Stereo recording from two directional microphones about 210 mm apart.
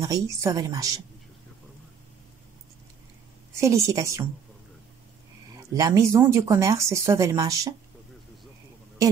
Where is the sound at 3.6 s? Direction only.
15° right (ahead or behind).